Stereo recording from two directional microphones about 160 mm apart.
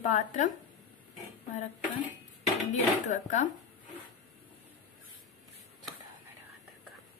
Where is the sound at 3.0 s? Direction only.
50° left (ahead or behind).